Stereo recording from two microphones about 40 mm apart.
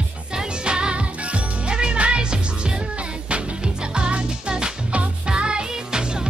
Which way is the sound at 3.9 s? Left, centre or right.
Right.